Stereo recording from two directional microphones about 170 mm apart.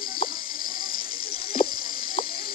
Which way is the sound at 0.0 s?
55° left (ahead or behind).